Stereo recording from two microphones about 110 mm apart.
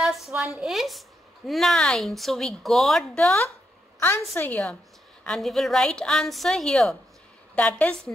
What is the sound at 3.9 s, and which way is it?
A woman's voice, 20° left (ahead or behind).